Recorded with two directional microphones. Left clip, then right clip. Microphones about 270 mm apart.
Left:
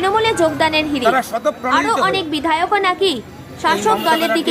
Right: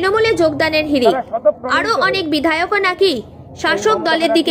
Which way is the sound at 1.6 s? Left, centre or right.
Centre.